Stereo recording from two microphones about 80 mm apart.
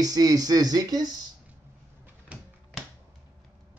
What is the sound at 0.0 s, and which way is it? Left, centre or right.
Speech, right.